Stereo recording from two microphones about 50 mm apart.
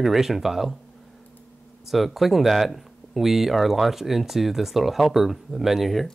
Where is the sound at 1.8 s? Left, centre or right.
Centre.